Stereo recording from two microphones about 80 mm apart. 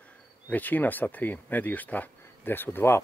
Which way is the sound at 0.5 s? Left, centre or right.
Left.